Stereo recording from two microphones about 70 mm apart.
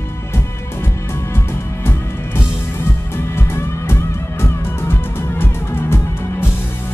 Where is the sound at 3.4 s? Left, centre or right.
Left.